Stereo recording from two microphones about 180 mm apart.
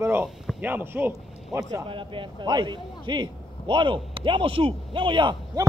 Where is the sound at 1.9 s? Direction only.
30° right (ahead or behind).